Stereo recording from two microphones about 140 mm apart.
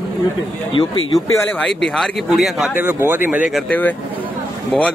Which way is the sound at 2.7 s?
15° right (ahead or behind).